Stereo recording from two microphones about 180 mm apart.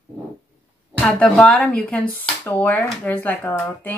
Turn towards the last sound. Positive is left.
turn(degrees=10)  # may be behind; listen again after turning